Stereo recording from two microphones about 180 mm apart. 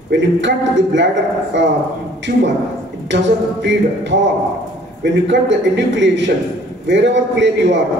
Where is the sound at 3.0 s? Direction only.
80° right.